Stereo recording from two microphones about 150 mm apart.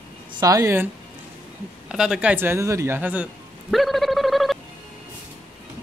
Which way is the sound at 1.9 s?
5° right (ahead or behind).